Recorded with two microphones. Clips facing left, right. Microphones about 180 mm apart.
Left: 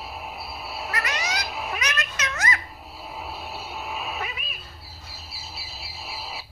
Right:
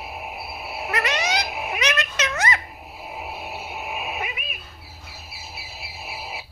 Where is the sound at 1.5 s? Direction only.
15° right (ahead or behind).